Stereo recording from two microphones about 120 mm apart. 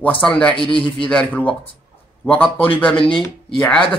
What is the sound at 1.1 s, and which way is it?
Speech, 10° left (ahead or behind).